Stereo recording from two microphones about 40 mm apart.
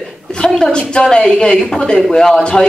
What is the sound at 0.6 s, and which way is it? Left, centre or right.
A woman's voice, left.